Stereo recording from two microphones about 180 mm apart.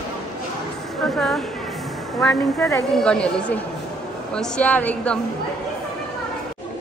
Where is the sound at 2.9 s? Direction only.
5° left (ahead or behind).